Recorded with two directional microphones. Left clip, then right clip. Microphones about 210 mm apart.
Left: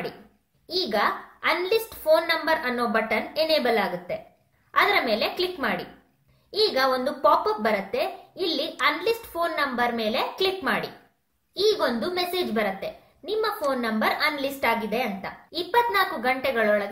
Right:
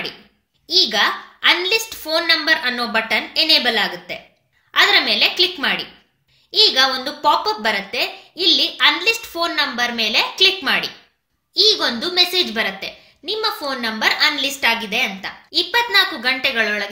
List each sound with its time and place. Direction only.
0.7 s a woman's voice: 45° right (ahead or behind)